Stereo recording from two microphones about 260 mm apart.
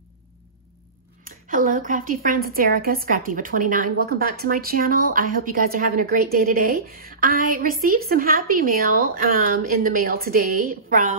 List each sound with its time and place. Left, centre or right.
1.2 s a woman's voice: right